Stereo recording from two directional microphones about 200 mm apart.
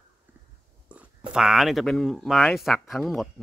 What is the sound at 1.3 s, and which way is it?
Speech, 5° right (ahead or behind).